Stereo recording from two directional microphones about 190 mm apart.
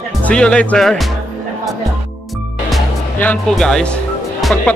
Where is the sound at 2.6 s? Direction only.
5° left (ahead or behind).